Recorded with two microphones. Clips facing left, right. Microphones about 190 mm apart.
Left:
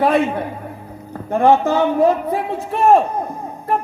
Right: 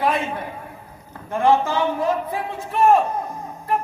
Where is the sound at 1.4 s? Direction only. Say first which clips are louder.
Left 4 dB; 60° left (ahead or behind).